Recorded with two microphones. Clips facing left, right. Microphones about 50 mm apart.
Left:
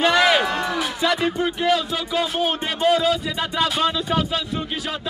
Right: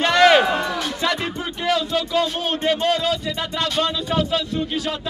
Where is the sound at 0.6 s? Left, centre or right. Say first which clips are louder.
Left 1 dB; centre.